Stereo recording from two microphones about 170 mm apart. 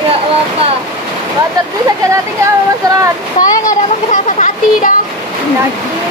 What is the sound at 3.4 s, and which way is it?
A child's voice, 50° left (ahead or behind).